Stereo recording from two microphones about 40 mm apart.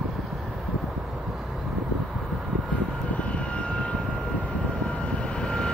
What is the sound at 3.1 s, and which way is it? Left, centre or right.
Vehicle, left.